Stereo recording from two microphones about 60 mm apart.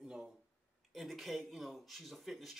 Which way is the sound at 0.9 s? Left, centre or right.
Centre.